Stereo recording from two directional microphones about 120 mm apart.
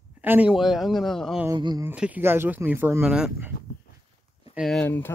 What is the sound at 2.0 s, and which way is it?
Speech, 15° right (ahead or behind).